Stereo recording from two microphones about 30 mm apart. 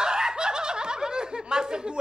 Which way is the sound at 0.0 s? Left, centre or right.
Right.